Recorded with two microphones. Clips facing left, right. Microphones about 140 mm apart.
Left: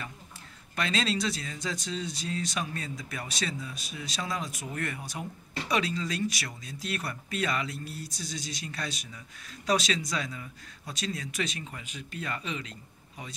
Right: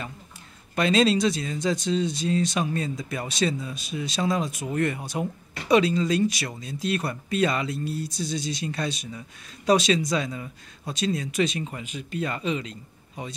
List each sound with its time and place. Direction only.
0.7 s speech: 20° right (ahead or behind)